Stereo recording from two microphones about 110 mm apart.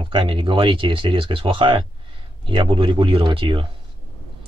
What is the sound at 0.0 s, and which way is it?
Speech, 50° right (ahead or behind).